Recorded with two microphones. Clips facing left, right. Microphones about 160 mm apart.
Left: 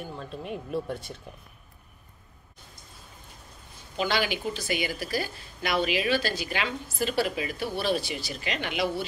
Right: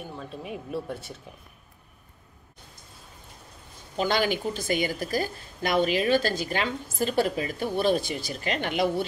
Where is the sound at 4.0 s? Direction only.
45° right (ahead or behind).